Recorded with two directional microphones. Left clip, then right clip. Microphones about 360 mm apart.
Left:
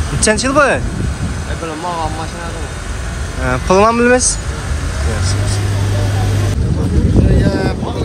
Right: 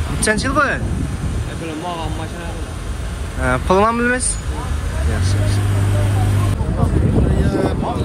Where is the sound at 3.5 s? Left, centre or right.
Centre.